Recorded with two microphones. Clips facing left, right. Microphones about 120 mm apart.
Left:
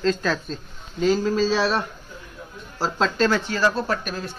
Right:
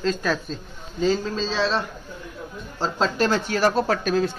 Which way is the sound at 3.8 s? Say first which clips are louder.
Right 5 dB; 90° right.